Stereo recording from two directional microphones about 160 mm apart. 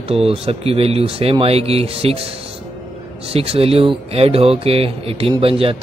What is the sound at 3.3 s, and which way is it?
Speech, 35° right (ahead or behind).